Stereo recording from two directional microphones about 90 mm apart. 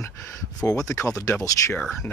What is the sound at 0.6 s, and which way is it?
Speech, 40° left (ahead or behind).